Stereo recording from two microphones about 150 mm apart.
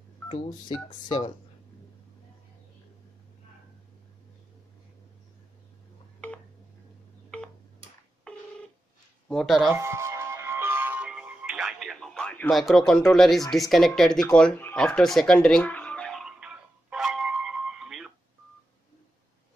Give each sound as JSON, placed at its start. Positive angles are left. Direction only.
{"t": 0.3, "sound": "speech", "side_deg": 30}
{"t": 6.2, "sound": "telephone dialing", "side_deg": 10}
{"t": 7.3, "sound": "tick-tock", "side_deg": 5}
{"t": 8.3, "sound": "telephone dialing", "side_deg": 5}
{"t": 9.3, "sound": "speech", "side_deg": 0}
{"t": 9.7, "sound": "music", "side_deg": -20}